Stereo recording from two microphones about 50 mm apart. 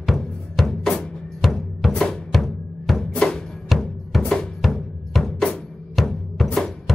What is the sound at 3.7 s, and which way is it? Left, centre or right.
Music, centre.